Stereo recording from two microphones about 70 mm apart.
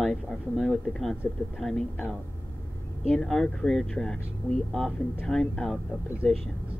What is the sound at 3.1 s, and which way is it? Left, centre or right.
Speech, centre.